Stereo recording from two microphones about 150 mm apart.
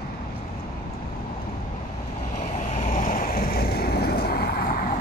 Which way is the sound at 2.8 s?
60° left (ahead or behind).